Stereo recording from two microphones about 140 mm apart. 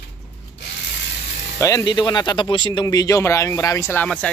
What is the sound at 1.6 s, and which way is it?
Speech, 25° left (ahead or behind).